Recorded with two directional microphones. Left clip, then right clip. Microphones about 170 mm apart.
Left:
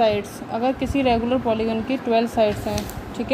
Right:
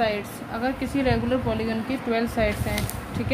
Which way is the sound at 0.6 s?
20° left (ahead or behind).